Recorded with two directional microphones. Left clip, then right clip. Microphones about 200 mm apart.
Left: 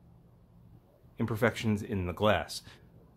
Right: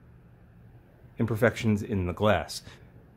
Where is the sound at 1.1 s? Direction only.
5° right (ahead or behind).